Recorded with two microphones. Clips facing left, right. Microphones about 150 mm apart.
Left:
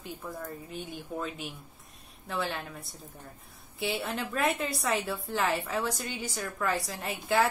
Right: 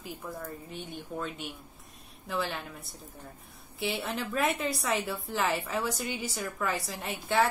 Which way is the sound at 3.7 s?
Centre (ahead or behind).